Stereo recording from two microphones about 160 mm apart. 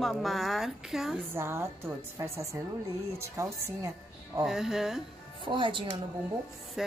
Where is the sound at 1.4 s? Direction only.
15° right (ahead or behind).